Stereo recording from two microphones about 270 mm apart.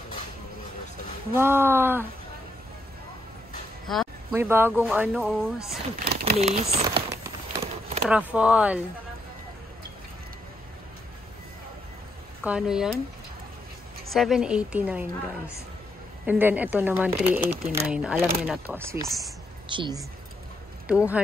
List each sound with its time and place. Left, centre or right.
1.3 s speech: centre
3.8 s a sound: centre
4.4 s speech: centre
6.0 s a sound: right
6.3 s speech: right
7.5 s clip-clop: right
8.1 s speech: centre
12.4 s speech: centre
14.1 s speech: centre
20.8 s speech: centre